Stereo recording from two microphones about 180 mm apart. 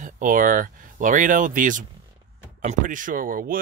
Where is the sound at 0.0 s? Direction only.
45° right (ahead or behind).